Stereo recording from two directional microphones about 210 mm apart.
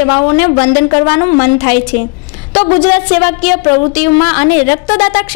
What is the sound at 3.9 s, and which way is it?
A woman's voice, 15° left (ahead or behind).